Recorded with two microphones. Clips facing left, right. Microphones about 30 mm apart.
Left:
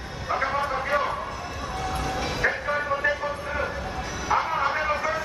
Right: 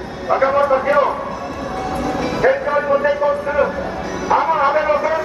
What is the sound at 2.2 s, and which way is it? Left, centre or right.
Vehicle, centre.